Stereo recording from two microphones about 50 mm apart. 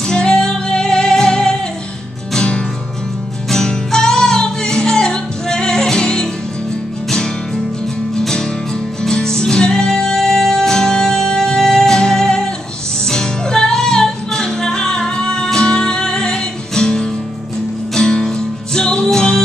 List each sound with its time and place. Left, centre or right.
0.1 s music: centre
8.2 s music: centre